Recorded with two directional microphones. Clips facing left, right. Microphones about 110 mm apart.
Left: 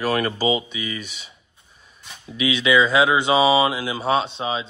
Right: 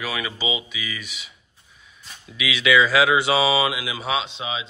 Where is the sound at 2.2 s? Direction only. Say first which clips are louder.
Left 2 dB; 30° left (ahead or behind).